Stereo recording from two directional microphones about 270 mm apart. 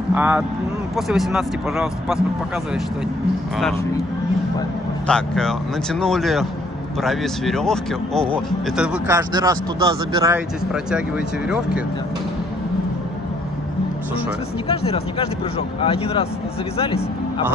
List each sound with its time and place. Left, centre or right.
0.1 s speech: centre
5.0 s speech: centre
14.7 s speech: left